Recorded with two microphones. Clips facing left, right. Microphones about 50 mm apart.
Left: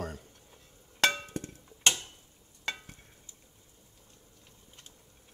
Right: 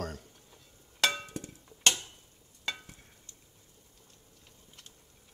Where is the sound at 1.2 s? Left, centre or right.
Left.